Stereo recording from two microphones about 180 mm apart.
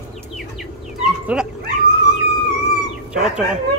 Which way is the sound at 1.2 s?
5° right (ahead or behind).